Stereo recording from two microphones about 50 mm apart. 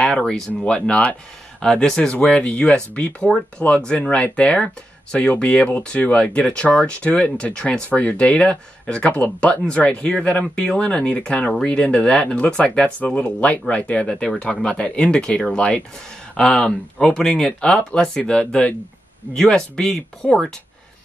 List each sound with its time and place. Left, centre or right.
0.1 s a sound: centre
0.7 s speech: centre
2.0 s speech: left